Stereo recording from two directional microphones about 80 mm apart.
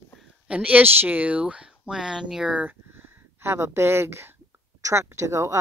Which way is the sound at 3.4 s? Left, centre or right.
Right.